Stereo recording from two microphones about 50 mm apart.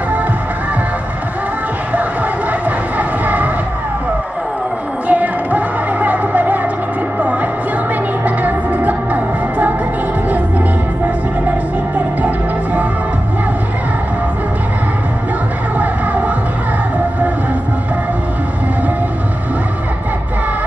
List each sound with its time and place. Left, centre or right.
3.0 s a sound: right
5.0 s music: right
8.4 s music: right